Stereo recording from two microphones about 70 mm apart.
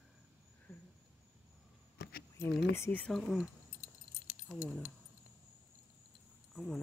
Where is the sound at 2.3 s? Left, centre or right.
Left.